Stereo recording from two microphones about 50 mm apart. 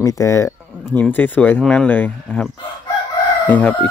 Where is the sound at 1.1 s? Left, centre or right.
Left.